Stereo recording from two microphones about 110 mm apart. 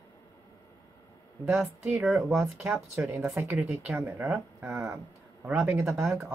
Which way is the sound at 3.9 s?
25° right (ahead or behind).